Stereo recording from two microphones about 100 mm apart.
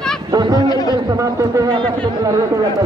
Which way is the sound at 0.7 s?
40° left (ahead or behind).